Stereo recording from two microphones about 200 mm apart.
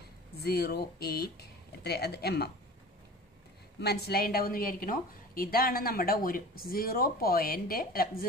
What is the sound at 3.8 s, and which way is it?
A woman's voice, 55° left (ahead or behind).